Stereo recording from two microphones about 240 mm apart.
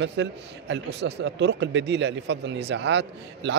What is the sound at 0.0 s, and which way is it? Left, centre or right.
A man's voice, right.